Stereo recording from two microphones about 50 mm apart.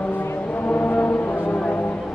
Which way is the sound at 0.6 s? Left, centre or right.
Left.